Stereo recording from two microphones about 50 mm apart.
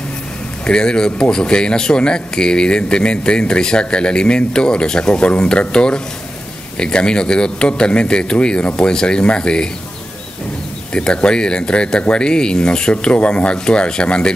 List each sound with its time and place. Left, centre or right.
0.7 s speech: centre
10.9 s speech: centre